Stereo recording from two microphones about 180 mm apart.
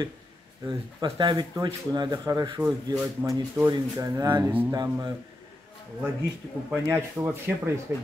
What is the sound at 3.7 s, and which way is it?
Speech, 20° right (ahead or behind).